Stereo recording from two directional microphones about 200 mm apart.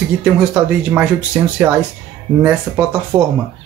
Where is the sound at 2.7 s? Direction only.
5° right (ahead or behind).